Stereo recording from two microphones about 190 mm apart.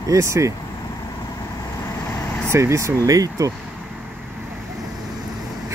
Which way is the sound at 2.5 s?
15° right (ahead or behind).